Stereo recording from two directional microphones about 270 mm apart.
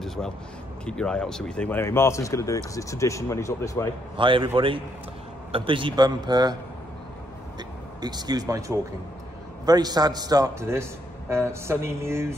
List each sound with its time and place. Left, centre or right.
0.0 s a sound: centre
0.8 s speech: centre
4.2 s a man's voice: centre
8.0 s a man's voice: centre